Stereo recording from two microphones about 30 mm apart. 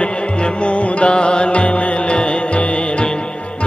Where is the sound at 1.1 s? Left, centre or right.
Left.